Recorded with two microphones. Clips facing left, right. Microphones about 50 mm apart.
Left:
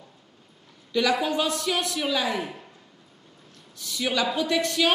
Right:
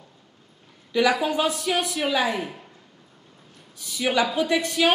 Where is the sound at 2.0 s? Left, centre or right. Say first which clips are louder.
Right 3 dB; right.